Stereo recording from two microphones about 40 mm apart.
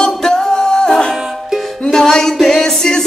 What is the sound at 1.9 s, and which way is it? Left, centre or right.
Music, centre.